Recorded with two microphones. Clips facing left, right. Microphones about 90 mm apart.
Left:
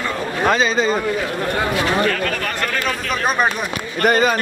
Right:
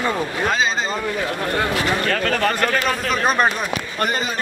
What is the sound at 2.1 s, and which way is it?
Speech, 40° right (ahead or behind).